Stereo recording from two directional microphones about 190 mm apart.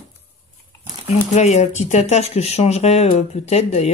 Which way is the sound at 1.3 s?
35° left (ahead or behind).